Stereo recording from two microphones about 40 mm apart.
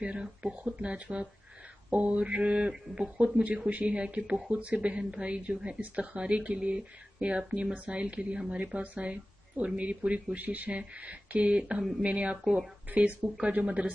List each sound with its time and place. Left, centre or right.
0.0 s speech: right
10.7 s speech: right